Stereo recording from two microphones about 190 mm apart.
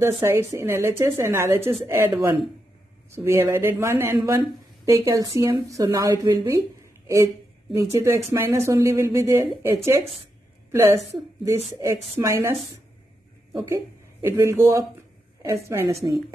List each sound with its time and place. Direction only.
0.2 s a woman's voice: 15° right (ahead or behind)
13.7 s speech: 15° right (ahead or behind)